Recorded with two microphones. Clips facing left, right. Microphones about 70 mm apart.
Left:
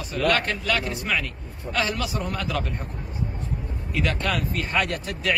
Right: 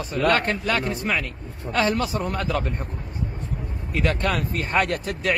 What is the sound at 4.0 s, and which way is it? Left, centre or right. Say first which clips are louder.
A man's voice: right 2 dB; right.